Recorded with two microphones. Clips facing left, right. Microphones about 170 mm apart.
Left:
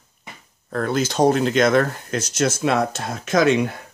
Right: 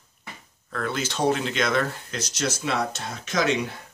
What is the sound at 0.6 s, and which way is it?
Speech, 40° left (ahead or behind).